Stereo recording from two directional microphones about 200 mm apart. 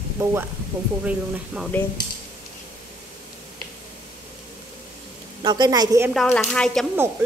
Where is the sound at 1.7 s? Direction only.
10° left (ahead or behind).